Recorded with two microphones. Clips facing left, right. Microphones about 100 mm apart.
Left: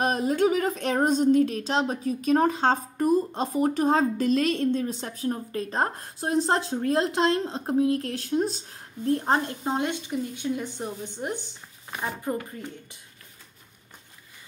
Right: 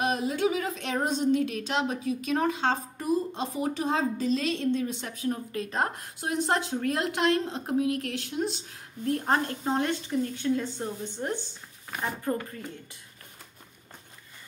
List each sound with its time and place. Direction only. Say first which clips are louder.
0.0 s female singing: left 4 dB; 45° left (ahead or behind)
4.7 s a woman's voice: left 2 dB; 35° left (ahead or behind); by 12.5 s 15° left (ahead or behind)